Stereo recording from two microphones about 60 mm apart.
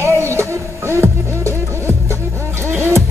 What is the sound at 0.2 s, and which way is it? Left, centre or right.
Music, right.